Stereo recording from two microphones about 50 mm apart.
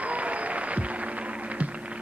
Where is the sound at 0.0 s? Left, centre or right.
Right.